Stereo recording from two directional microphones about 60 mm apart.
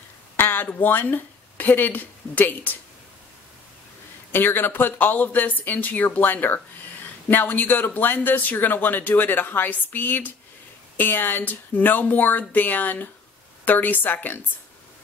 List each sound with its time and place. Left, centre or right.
0.4 s speech: left
4.3 s speech: left